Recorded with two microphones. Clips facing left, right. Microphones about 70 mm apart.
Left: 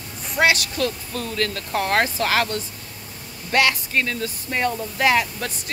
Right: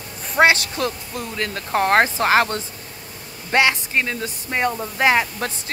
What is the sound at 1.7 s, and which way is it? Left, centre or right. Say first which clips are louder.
Speech: right 6 dB; right.